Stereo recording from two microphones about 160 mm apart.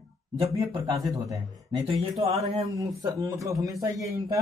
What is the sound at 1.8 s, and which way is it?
Speech, 40° right (ahead or behind).